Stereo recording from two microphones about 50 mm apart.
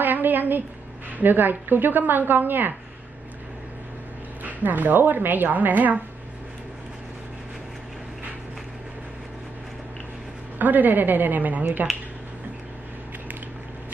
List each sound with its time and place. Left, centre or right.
0.0 s a sound: right
1.1 s a woman's voice: right
4.4 s a woman's voice: right
10.6 s a woman's voice: right